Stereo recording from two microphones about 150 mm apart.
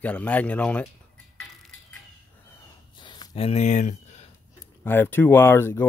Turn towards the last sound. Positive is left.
turn(degrees=15)  # may be behind; listen again after turning